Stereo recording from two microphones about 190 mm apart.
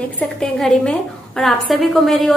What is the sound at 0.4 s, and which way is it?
A woman's voice, 5° left (ahead or behind).